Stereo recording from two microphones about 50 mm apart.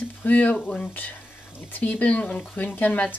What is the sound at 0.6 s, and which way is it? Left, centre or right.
Speech, centre.